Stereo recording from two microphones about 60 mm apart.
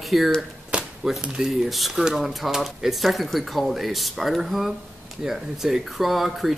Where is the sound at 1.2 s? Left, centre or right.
Centre.